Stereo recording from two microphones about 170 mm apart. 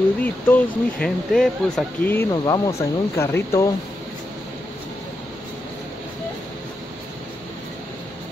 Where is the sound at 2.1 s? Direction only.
20° left (ahead or behind).